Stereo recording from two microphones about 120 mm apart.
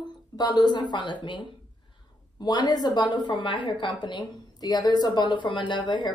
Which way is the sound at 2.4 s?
35° left (ahead or behind).